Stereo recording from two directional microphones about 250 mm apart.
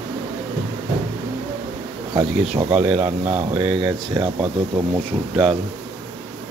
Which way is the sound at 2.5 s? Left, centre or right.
Right.